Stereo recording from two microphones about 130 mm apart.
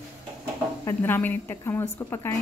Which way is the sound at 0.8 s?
15° left (ahead or behind).